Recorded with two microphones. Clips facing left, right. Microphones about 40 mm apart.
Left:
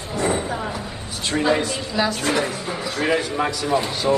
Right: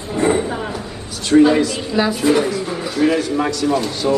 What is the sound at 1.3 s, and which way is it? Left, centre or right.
Speech, centre.